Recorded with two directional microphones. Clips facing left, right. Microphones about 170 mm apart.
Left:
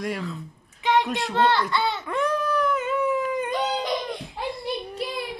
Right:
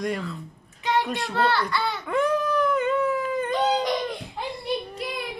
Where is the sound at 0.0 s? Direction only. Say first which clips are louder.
Right 1 dB; centre (ahead or behind).